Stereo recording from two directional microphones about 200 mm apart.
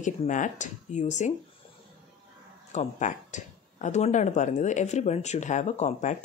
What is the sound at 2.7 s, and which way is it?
Speech, 35° left (ahead or behind).